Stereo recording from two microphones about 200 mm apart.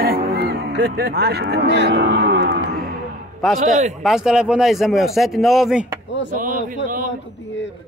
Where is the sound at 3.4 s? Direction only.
Centre (ahead or behind).